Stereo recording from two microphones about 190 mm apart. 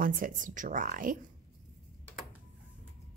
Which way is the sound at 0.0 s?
45° right (ahead or behind).